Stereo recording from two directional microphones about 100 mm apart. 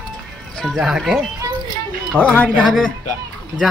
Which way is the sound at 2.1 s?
15° left (ahead or behind).